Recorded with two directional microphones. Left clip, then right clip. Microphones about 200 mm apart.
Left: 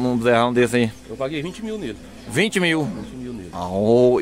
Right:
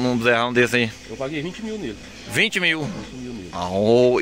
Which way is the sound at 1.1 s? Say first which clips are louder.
Left 3 dB; 25° left (ahead or behind).